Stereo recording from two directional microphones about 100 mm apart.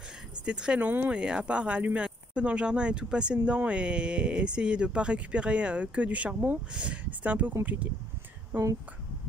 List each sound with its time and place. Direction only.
0.5 s speech: 10° right (ahead or behind)
8.5 s speech: 30° right (ahead or behind)